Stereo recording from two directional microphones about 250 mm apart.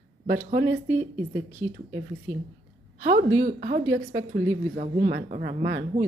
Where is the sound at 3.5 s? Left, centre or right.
Right.